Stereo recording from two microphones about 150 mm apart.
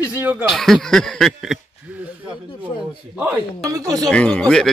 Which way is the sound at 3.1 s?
10° right (ahead or behind).